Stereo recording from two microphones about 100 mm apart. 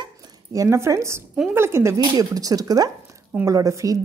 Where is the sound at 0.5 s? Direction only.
30° right (ahead or behind).